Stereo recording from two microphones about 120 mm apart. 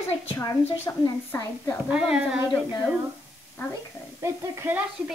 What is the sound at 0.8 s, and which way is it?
Speech, 20° left (ahead or behind).